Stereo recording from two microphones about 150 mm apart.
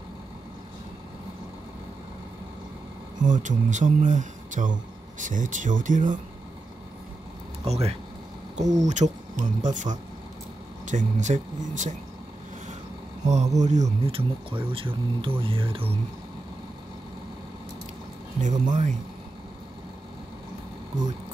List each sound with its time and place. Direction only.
3.2 s speech: 60° right (ahead or behind)
7.6 s speech: 45° right (ahead or behind)
10.9 s speech: 55° right (ahead or behind)
13.2 s speech: 50° right (ahead or behind)
18.4 s speech: 55° right (ahead or behind)